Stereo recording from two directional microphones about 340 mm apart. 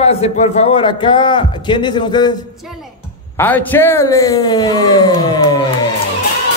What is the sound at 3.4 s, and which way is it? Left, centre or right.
A man's voice, centre.